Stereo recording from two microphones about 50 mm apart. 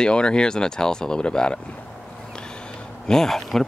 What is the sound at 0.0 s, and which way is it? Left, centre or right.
Speech, centre.